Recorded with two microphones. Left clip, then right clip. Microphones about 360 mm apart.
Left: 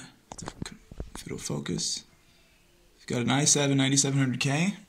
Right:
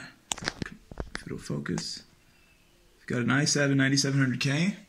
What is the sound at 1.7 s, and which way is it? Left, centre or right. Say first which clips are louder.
Speech: left 1 dB; left.